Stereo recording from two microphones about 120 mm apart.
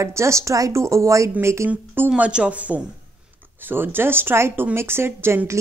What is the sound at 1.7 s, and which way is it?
Speech, 10° right (ahead or behind).